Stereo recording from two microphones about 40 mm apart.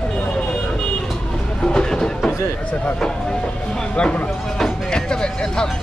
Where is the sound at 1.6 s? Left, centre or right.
Centre.